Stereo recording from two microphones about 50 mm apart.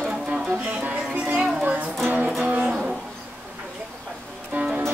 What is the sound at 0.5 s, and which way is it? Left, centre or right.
Music, right.